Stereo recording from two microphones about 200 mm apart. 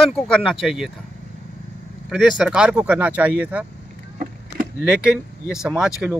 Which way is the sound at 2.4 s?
5° right (ahead or behind).